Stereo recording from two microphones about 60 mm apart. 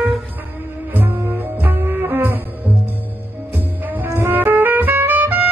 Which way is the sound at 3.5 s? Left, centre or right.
Right.